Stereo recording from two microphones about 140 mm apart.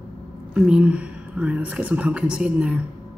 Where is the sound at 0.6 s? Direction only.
5° right (ahead or behind).